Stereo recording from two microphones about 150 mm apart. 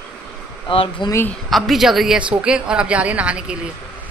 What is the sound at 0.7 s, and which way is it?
Speech, 35° left (ahead or behind).